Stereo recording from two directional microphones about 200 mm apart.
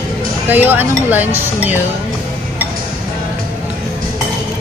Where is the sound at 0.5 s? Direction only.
10° right (ahead or behind).